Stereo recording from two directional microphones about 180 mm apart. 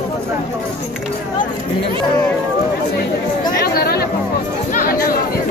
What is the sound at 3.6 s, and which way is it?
Chatter, 60° left (ahead or behind).